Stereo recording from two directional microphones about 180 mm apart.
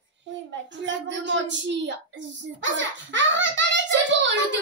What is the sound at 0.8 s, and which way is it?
A woman's voice, 90° right.